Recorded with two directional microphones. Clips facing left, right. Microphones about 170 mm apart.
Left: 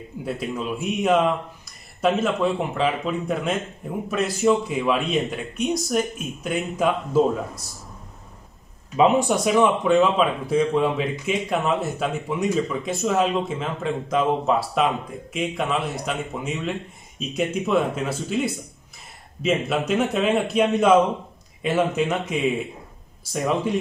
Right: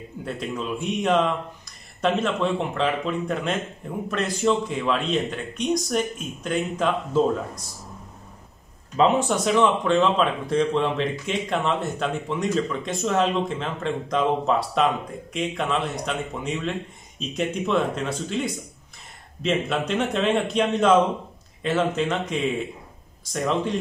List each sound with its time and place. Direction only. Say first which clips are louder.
0.2 s speech: left 2 dB; 5° left (ahead or behind)
8.9 s speech: left 2 dB; 10° left (ahead or behind)